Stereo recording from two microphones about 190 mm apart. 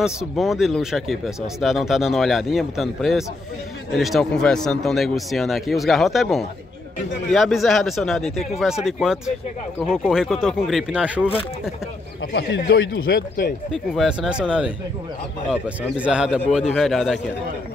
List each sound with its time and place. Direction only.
0.0 s speech: centre (ahead or behind)
12.3 s a man's voice: 65° left (ahead or behind)
13.7 s speech: centre (ahead or behind)